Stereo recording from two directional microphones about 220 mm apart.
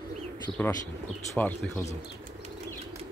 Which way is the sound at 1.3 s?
10° left (ahead or behind).